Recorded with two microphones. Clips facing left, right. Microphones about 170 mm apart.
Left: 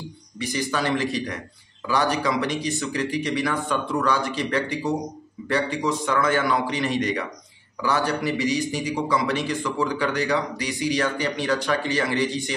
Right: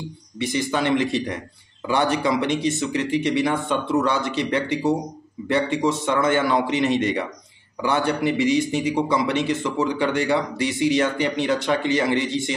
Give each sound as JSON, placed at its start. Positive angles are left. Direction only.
{"t": 0.4, "sound": "a man's voice", "side_deg": -20}